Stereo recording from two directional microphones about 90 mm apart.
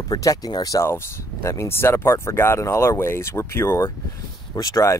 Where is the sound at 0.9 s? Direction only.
30° left (ahead or behind).